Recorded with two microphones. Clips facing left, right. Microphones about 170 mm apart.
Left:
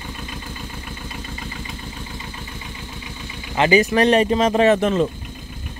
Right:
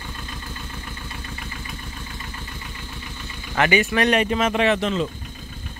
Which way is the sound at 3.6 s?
20° left (ahead or behind).